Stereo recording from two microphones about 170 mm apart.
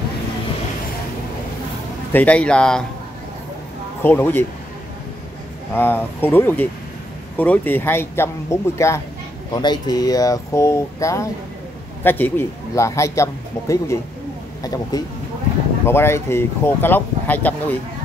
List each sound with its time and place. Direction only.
2.1 s a man's voice: 10° left (ahead or behind)
4.0 s speech: 10° left (ahead or behind)
5.8 s speech: 10° left (ahead or behind)